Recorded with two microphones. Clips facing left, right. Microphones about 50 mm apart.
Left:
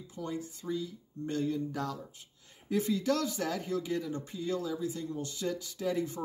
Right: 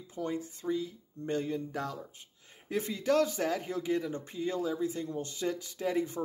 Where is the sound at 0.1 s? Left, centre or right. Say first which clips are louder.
Right 3 dB; right.